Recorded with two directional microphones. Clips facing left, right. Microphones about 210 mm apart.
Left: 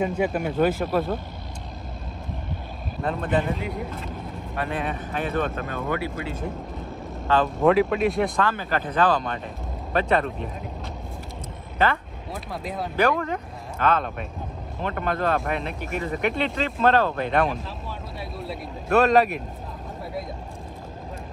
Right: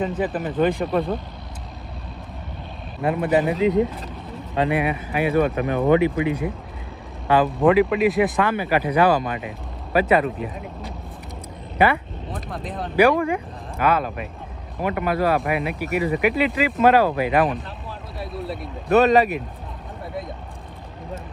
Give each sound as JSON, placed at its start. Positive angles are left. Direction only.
{"t": 0.2, "sound": "speech", "side_deg": 0}
{"t": 3.0, "sound": "speech", "side_deg": -5}
{"t": 3.5, "sound": "speech", "side_deg": -90}
{"t": 4.6, "sound": "speech", "side_deg": -15}
{"t": 7.4, "sound": "speech", "side_deg": 0}
{"t": 8.4, "sound": "speech", "side_deg": -15}
{"t": 11.8, "sound": "speech", "side_deg": -15}
{"t": 12.3, "sound": "speech", "side_deg": 0}
{"t": 13.2, "sound": "speech", "side_deg": -10}